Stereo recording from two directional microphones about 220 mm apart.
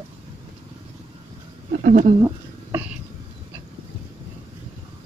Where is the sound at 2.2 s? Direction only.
15° right (ahead or behind).